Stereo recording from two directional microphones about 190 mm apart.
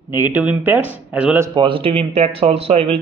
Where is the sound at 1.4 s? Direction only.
25° right (ahead or behind).